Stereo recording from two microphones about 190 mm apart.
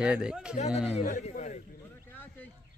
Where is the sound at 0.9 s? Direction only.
40° left (ahead or behind).